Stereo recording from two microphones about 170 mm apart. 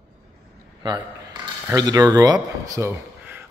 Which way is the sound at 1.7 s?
20° right (ahead or behind).